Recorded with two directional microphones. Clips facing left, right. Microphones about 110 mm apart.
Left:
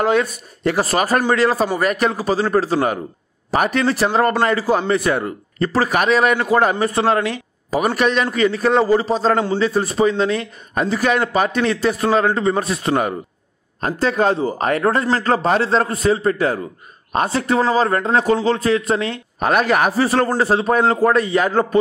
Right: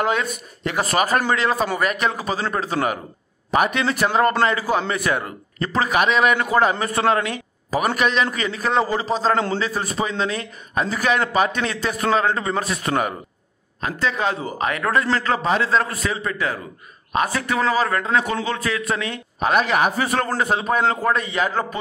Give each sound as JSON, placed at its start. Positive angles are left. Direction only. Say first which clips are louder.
{"t": 0.7, "sound": "speech", "louder": "left 3 dB", "side_deg": 35}
{"t": 13.7, "sound": "speech", "louder": "left 5 dB", "side_deg": 45}